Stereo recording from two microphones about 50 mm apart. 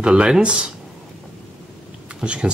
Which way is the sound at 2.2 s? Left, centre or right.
Centre.